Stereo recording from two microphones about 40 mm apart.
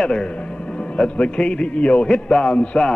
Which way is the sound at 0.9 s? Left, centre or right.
Left.